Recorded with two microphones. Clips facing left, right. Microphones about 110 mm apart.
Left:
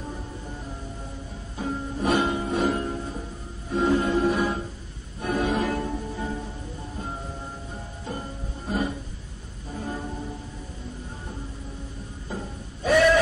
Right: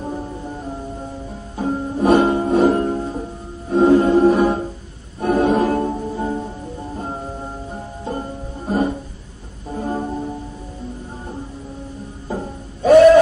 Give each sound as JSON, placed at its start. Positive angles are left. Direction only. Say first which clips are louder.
{"t": 1.6, "sound": "music", "louder": "right 9 dB", "side_deg": -40}
{"t": 8.0, "sound": "music", "louder": "right 8 dB", "side_deg": -40}
{"t": 12.3, "sound": "music", "louder": "right 8 dB", "side_deg": -45}